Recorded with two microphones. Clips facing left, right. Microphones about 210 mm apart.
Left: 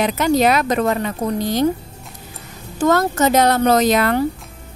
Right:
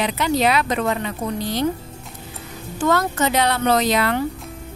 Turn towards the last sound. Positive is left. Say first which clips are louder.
# left 4 dB
turn(degrees=45)  # may be behind; listen again after turning